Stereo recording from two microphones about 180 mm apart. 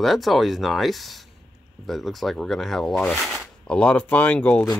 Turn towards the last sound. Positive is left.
turn(degrees=5)  # may be behind; listen again after turning